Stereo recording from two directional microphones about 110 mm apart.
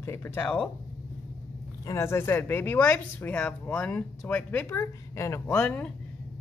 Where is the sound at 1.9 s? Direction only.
25° left (ahead or behind).